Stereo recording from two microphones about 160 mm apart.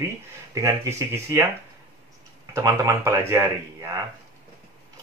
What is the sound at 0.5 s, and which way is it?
Speech, 20° right (ahead or behind).